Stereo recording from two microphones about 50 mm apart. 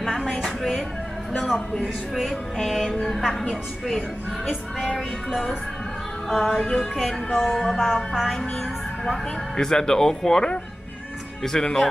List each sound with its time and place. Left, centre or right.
0.0 s a sound: centre
1.3 s speech: centre
6.2 s speech: centre
7.2 s speech: centre
7.5 s speech: centre
7.9 s music: centre
9.0 s speech: centre